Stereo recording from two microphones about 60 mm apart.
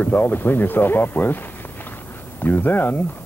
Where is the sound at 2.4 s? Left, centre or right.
Left.